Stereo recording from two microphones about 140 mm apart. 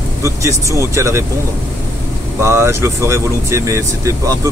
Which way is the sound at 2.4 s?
20° right (ahead or behind).